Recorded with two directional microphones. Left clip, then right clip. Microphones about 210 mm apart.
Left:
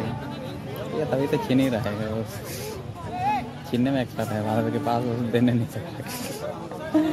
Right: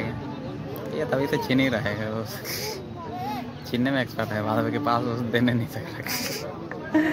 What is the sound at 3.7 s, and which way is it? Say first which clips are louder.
A man's voice: even; 25° left (ahead or behind).